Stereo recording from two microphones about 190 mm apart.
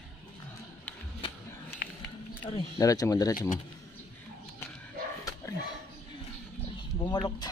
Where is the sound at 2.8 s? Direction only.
15° left (ahead or behind).